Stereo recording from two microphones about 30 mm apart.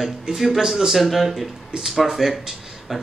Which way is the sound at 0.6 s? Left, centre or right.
Centre.